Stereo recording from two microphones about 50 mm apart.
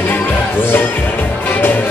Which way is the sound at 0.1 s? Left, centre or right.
Left.